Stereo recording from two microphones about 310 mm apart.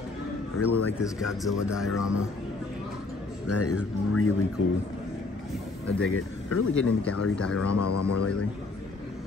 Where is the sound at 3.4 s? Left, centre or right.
Left.